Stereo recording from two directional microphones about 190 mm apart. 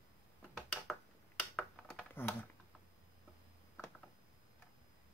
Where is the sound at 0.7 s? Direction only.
5° left (ahead or behind).